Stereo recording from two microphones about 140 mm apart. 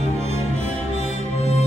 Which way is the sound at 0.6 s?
50° left (ahead or behind).